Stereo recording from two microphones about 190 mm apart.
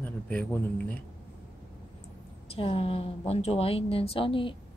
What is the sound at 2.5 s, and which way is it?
A woman's voice, 30° left (ahead or behind).